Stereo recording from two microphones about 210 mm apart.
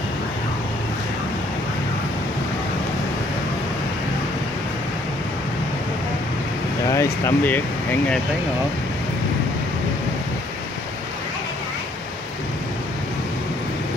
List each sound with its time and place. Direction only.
6.9 s speech: 15° left (ahead or behind)